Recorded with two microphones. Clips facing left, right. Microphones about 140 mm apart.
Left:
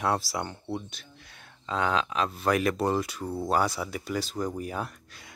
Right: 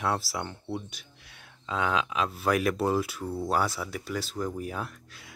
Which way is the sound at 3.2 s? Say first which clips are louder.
Even; 15° left (ahead or behind).